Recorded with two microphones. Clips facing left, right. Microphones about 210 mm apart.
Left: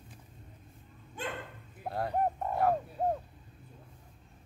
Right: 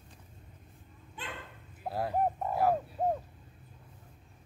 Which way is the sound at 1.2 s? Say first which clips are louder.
Left 6 dB; 45° left (ahead or behind).